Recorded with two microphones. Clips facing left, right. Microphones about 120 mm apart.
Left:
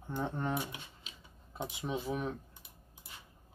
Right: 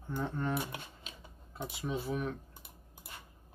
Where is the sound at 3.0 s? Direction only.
55° right (ahead or behind).